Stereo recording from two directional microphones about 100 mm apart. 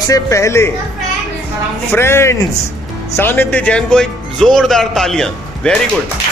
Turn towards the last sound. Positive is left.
turn(degrees=5)  # may be behind; listen again after turning